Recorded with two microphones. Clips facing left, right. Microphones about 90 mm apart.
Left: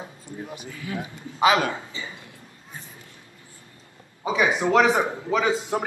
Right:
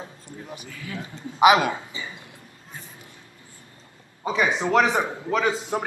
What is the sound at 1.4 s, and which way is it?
Speech, 15° right (ahead or behind).